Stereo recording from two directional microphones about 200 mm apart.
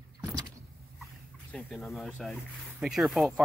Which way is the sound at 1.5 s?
Centre (ahead or behind).